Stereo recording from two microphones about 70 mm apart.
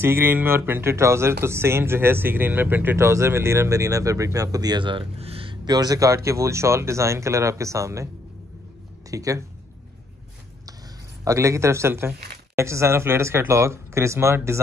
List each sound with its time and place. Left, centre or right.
0.0 s speech: right
3.0 s speech: right
9.1 s speech: right
11.2 s speech: right